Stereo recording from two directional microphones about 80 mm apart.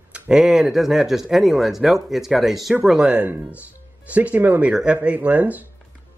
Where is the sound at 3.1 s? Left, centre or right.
Right.